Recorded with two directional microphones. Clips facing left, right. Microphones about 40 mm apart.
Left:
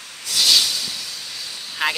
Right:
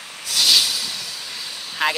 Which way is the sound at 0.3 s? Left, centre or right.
Centre.